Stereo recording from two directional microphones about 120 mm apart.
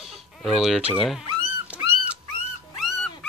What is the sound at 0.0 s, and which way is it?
Chicken, centre (ahead or behind).